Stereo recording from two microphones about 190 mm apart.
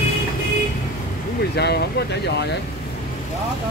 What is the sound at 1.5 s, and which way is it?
Speech, 60° left (ahead or behind).